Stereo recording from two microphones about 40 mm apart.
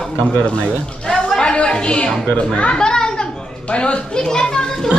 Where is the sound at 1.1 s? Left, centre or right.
Centre.